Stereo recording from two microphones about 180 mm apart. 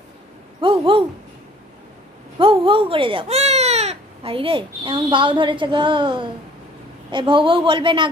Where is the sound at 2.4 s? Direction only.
30° right (ahead or behind).